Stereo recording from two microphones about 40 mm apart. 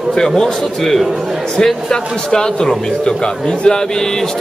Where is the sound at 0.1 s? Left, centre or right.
Centre.